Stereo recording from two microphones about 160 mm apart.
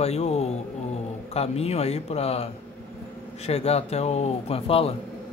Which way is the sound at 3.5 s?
40° left (ahead or behind).